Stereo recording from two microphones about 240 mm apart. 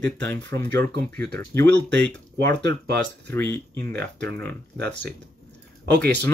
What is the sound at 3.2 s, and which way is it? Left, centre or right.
Speech, centre.